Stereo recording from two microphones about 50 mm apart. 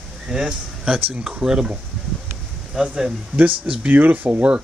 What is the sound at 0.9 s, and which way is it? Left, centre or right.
Speech, right.